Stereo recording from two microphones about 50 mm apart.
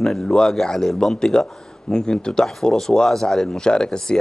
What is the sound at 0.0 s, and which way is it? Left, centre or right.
Speech, centre.